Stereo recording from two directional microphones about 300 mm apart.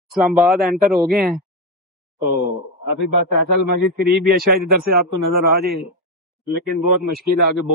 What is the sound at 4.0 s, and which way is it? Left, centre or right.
Speech, right.